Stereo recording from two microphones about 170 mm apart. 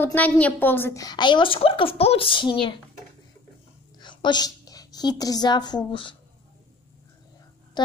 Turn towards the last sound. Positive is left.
turn(degrees=25)  # may be behind; listen again after turning